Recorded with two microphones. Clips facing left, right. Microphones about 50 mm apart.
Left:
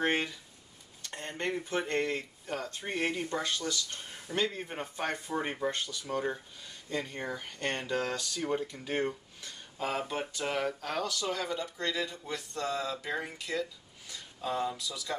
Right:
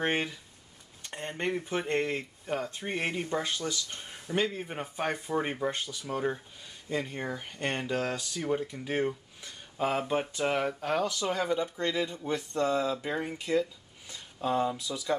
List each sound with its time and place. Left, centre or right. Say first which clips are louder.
0.0 s speech: even; centre
6.0 s speech: right 3 dB; centre; by 15.1 s right